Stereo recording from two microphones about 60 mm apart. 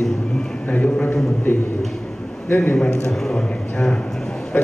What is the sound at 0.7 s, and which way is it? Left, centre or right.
Speech, left.